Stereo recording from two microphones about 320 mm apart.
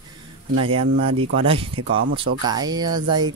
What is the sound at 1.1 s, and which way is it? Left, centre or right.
Speech, right.